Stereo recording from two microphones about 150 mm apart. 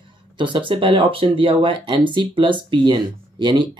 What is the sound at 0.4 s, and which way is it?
Speech, 35° right (ahead or behind).